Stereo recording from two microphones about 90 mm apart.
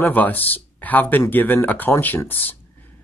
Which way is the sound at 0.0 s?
20° left (ahead or behind).